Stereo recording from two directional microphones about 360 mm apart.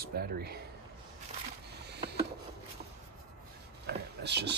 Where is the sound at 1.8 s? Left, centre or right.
Right.